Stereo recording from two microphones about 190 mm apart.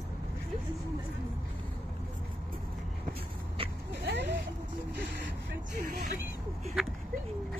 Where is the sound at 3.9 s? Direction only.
65° right (ahead or behind).